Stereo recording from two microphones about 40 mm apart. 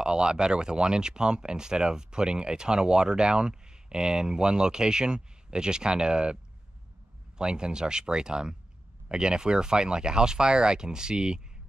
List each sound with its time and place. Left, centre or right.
0.0 s speech: right
7.3 s speech: right